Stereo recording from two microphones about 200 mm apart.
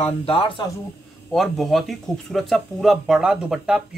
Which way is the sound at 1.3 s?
Centre (ahead or behind).